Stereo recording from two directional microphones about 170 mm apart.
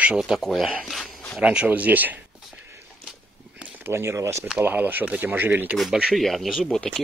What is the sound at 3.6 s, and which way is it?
Speech, 15° right (ahead or behind).